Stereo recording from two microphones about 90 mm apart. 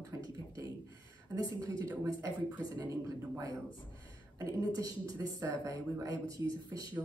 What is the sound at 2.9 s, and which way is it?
Speech, 40° right (ahead or behind).